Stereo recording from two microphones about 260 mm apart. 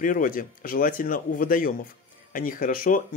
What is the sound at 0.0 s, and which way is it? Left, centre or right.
Speech, left.